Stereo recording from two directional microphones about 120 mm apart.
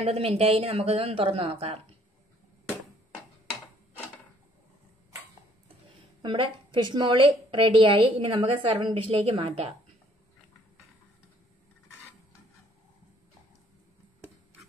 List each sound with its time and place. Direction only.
0.0 s speech: 55° right (ahead or behind)
6.2 s a woman's voice: 45° right (ahead or behind)
9.2 s speech: 60° right (ahead or behind)